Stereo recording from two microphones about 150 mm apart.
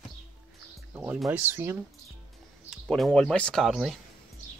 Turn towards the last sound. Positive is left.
turn(degrees=0)  # may be behind; listen again after turning